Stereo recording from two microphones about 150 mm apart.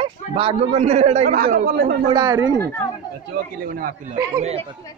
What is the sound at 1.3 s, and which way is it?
Speech, 65° right (ahead or behind).